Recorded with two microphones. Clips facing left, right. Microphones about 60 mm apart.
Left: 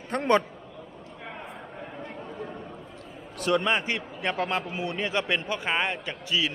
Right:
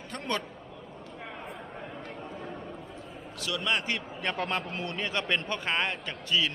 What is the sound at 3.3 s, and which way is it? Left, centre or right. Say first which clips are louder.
Speech: left 10 dB; left.